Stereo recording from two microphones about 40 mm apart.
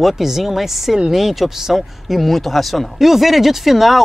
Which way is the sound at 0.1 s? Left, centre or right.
Centre.